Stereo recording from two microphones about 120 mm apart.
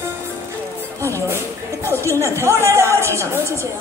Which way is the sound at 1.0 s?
25° right (ahead or behind).